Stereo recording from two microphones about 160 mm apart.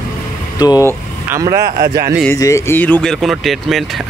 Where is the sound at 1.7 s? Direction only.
65° right (ahead or behind).